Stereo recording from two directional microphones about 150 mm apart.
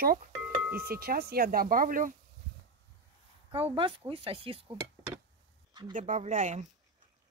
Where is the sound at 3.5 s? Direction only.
35° right (ahead or behind).